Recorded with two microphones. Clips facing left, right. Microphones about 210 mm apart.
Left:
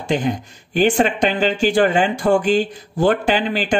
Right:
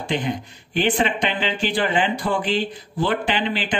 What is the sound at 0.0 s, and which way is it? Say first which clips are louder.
A man's voice: left 4 dB; 45° left (ahead or behind).